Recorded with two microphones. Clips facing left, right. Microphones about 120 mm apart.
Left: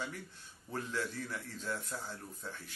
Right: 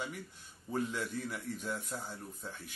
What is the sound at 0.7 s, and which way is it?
Speech, 15° right (ahead or behind).